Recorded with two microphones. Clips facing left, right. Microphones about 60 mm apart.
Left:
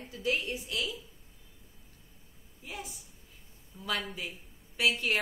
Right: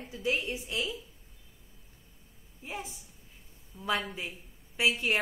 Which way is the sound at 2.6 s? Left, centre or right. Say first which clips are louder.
Right 3 dB; right.